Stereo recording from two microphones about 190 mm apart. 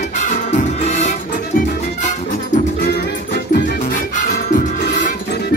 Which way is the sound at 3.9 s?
45° left (ahead or behind).